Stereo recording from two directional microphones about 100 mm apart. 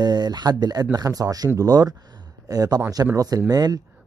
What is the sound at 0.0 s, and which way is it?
Speech, 45° right (ahead or behind).